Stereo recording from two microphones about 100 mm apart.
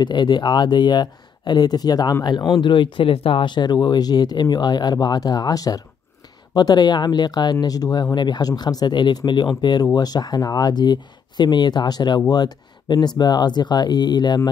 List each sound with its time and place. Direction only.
0.0 s speech: 50° left (ahead or behind)
2.6 s speech: 55° left (ahead or behind)